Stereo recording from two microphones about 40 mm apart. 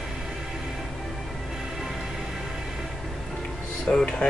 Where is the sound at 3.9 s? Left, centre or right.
Left.